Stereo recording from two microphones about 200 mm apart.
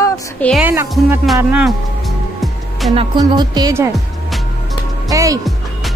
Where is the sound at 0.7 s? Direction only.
10° right (ahead or behind).